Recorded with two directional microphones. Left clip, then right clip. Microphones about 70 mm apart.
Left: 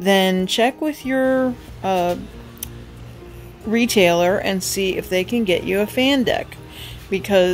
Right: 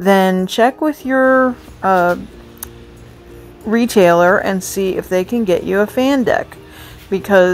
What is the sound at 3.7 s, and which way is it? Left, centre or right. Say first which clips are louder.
A woman's voice: right 5 dB; right.